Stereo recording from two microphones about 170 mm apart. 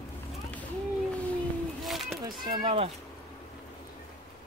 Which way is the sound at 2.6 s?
35° right (ahead or behind).